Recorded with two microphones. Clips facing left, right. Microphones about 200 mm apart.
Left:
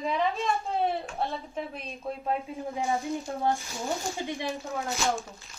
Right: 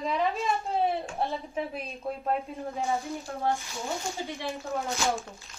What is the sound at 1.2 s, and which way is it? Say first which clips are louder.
Speech: right 1 dB; 10° right (ahead or behind).